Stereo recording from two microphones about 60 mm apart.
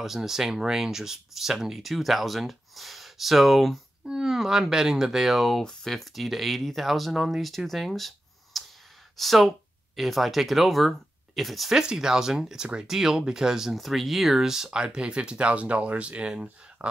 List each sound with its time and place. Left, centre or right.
0.0 s speech: centre
4.0 s speech: centre
8.5 s sigh: centre
9.1 s speech: centre
11.7 s speech: centre